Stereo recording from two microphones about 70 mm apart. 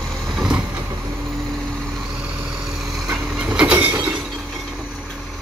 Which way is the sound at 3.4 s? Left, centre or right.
Centre.